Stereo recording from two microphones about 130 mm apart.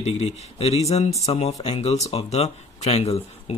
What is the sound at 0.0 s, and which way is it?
Speech, 55° left (ahead or behind).